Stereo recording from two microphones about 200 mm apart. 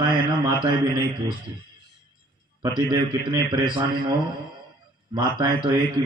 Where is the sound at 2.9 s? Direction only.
20° right (ahead or behind).